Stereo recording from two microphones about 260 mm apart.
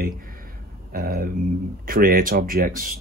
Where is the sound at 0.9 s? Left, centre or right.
Right.